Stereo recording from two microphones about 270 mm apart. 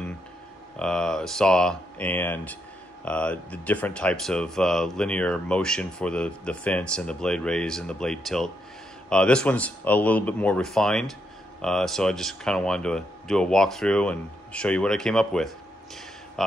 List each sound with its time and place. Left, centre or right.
0.7 s speech: centre